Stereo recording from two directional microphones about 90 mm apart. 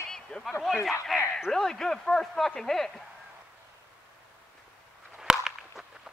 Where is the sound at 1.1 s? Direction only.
5° right (ahead or behind).